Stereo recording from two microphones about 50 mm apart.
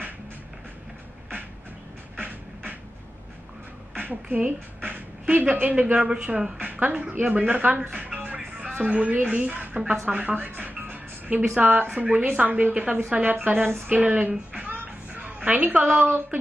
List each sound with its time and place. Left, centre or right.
2.1 s beatboxing: right
3.9 s a woman's voice: right
5.9 s a woman's voice: right
7.9 s a woman's voice: right
10.0 s music: right
11.5 s a woman's voice: right
14.5 s music: right
16.0 s speech: right